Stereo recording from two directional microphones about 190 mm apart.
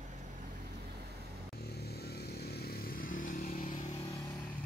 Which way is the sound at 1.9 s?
55° left (ahead or behind).